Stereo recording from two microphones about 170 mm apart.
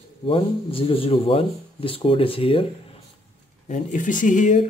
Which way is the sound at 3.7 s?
50° left (ahead or behind).